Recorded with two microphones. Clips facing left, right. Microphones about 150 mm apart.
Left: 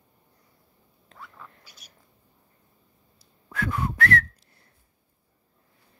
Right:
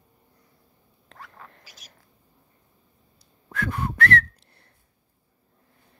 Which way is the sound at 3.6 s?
60° right (ahead or behind).